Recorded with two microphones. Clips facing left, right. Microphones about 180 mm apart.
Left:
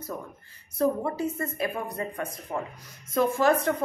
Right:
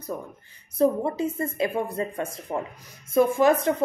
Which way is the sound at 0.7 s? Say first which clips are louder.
Right 4 dB; 20° right (ahead or behind).